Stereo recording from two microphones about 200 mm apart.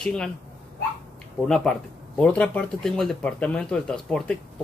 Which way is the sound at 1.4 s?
Centre (ahead or behind).